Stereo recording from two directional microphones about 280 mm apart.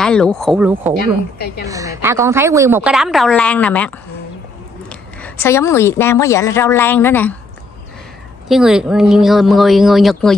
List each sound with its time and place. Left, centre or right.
0.0 s speech: centre
0.9 s a woman's voice: left
1.7 s a woman's voice: centre
8.5 s speech: centre